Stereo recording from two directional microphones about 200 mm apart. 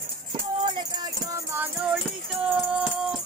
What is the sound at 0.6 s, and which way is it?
Music, 20° right (ahead or behind).